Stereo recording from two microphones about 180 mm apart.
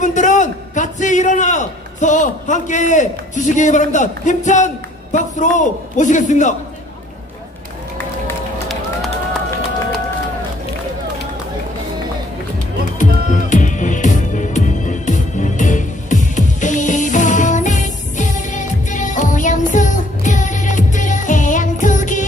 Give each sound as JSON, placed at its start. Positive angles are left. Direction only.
{"t": 0.0, "sound": "a man's voice", "side_deg": 45}
{"t": 12.8, "sound": "music", "side_deg": 45}